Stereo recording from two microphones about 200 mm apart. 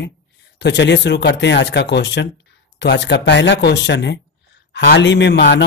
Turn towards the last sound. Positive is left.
turn(degrees=60)  # may be behind; listen again after turning